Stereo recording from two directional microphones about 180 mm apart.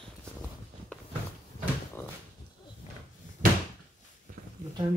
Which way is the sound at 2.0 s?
15° left (ahead or behind).